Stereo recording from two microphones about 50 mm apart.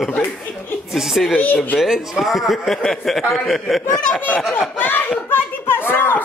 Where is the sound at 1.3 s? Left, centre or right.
Left.